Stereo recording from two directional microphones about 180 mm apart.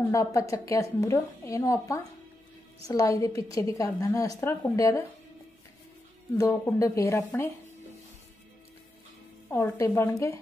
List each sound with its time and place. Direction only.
0.1 s a woman's voice: 15° left (ahead or behind)
6.3 s a woman's voice: 15° left (ahead or behind)
9.5 s a woman's voice: 15° left (ahead or behind)